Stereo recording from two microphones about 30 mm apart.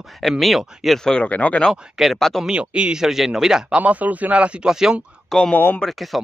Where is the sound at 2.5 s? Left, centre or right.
Right.